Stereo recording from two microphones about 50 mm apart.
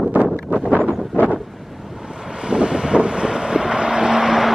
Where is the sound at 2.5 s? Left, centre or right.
Centre.